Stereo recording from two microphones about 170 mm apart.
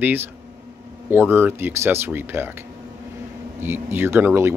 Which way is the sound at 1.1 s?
10° right (ahead or behind).